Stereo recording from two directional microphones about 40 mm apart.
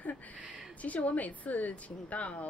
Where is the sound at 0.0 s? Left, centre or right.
Left.